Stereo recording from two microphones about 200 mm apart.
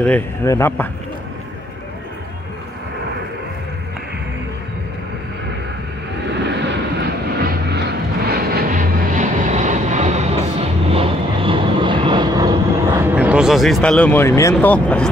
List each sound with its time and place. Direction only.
0.0 s a man's voice: 10° left (ahead or behind)
6.6 s vehicle: 60° right (ahead or behind); by 15.0 s 5° left (ahead or behind)